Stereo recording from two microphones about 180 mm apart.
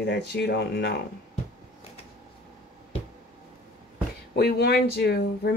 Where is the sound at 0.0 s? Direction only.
70° left (ahead or behind).